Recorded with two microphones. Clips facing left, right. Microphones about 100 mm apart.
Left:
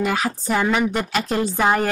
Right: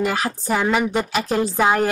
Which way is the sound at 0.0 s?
Centre (ahead or behind).